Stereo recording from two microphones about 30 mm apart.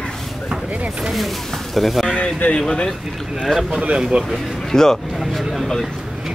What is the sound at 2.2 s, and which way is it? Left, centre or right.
Speech, left.